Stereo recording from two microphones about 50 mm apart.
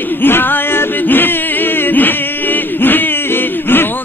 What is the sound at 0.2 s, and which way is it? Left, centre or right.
Yodeling, left.